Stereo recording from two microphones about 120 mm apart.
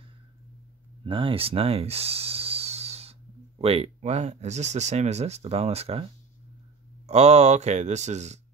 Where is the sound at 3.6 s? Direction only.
55° right (ahead or behind).